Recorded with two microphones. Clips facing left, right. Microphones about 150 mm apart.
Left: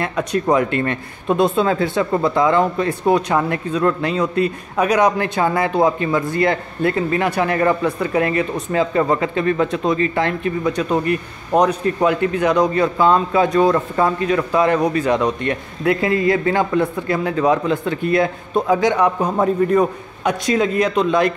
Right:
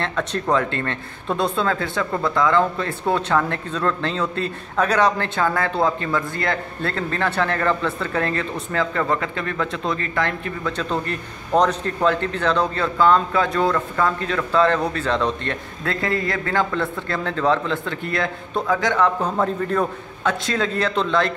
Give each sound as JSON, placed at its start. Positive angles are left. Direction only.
{"t": 0.0, "sound": "speech", "side_deg": 10}